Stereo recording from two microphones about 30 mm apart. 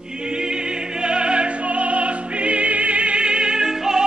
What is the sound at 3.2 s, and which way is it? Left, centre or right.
Music, right.